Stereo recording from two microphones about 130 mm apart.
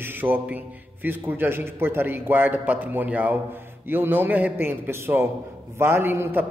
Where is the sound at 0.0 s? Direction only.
15° right (ahead or behind).